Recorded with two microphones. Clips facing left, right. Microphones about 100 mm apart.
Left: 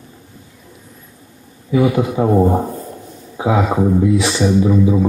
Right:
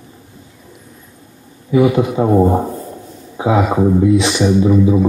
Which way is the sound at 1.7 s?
20° right (ahead or behind).